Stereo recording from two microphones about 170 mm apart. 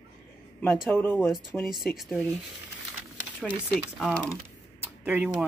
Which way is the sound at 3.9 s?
Centre (ahead or behind).